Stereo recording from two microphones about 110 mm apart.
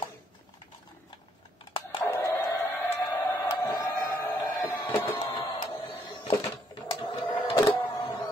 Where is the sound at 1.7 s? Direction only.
55° left (ahead or behind).